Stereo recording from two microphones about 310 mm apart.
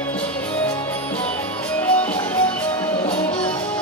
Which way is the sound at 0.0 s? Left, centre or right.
Centre.